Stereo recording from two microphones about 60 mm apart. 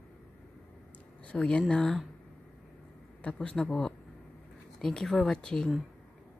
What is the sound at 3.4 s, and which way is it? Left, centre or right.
Speech, centre.